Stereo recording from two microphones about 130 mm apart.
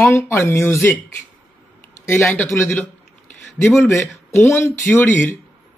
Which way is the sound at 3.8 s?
20° left (ahead or behind).